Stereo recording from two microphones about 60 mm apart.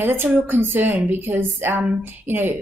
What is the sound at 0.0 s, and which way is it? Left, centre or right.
Speech, right.